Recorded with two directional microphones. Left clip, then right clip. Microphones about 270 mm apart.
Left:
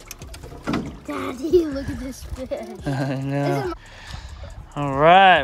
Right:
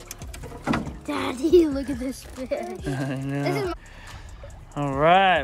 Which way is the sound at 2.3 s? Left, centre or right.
Centre.